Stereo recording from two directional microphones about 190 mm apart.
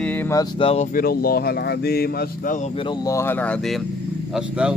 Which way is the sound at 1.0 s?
55° left (ahead or behind).